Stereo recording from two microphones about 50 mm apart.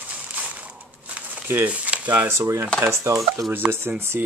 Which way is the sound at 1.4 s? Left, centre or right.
Right.